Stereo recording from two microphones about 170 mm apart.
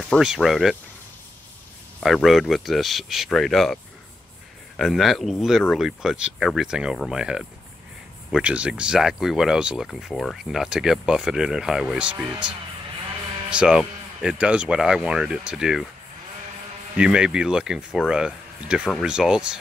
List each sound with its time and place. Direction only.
0.0 s speech: centre (ahead or behind)
2.0 s speech: centre (ahead or behind)
16.9 s speech: 5° right (ahead or behind)